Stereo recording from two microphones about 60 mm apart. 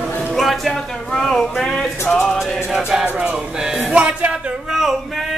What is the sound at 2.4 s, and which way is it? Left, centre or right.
Music, centre.